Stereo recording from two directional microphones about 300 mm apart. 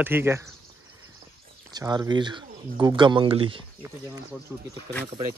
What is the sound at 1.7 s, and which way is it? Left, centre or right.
Speech, centre.